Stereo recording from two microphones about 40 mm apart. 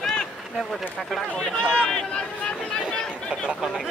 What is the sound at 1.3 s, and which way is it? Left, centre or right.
Run, centre.